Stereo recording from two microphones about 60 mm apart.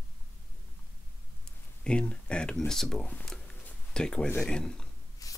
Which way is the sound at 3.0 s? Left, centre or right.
Left.